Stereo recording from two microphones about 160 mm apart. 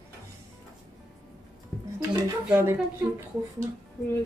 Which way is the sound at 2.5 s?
15° right (ahead or behind).